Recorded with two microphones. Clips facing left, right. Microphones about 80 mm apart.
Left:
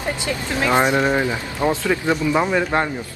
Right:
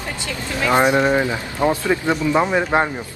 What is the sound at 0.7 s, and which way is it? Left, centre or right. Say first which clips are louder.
A woman's voice: right 2 dB; right.